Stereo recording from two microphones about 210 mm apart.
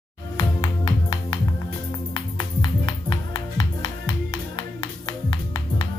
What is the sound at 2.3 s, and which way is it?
Music, 20° left (ahead or behind).